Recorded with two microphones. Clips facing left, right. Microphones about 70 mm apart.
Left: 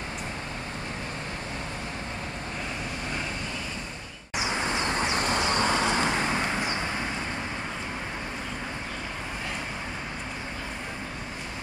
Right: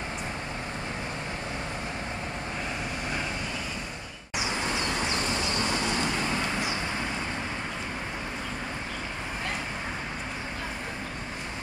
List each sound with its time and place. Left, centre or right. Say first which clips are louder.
4.4 s vehicle: left 2 dB; left
5.2 s vehicle: left 4 dB; left